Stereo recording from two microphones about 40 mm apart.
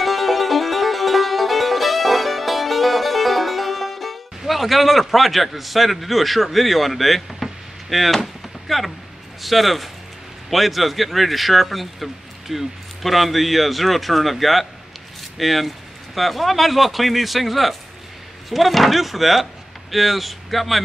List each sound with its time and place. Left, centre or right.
0.0 s music: centre
7.9 s speech: centre